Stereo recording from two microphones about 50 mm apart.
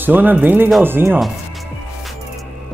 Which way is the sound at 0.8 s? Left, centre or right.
Right.